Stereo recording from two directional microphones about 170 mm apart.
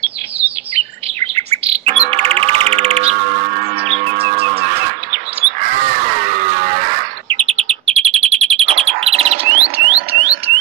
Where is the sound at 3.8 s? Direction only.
35° right (ahead or behind).